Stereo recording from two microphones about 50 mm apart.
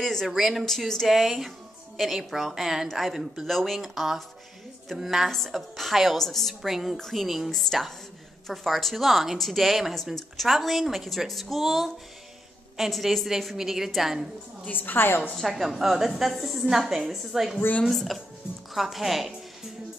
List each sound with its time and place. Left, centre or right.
0.0 s speech: centre
0.3 s speech: centre
0.7 s speech: centre
1.0 s a woman's voice: centre
3.4 s speech: centre
14.7 s a woman's voice: left
15.3 s a woman's voice: centre